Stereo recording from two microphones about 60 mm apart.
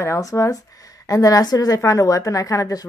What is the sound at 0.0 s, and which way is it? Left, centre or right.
Speech, left.